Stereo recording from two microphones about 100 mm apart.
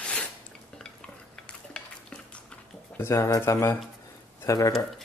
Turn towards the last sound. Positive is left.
turn(degrees=30)  # may be behind; listen again after turning